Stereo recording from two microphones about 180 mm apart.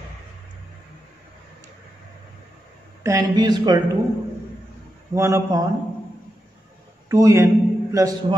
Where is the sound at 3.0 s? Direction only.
20° right (ahead or behind).